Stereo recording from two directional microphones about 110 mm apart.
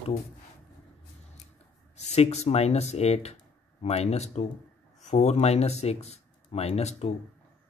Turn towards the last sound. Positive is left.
turn(degrees=75)  # may be behind; listen again after turning